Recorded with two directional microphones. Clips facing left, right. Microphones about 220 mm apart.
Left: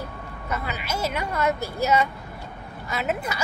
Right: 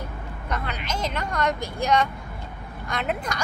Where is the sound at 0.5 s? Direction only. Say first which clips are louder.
Left 1 dB; 5° left (ahead or behind).